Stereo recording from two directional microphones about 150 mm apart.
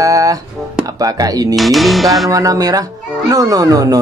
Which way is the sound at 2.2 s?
25° right (ahead or behind).